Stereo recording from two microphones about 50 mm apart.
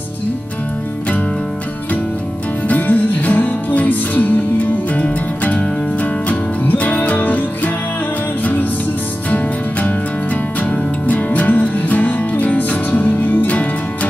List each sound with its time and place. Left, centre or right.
2.7 s music: left
9.3 s music: left
11.1 s music: left